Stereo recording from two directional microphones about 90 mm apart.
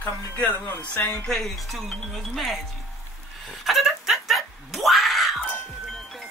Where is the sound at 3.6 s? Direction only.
Centre (ahead or behind).